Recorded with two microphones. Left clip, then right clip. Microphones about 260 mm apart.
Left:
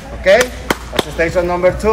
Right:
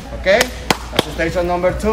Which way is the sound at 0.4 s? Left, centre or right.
Right.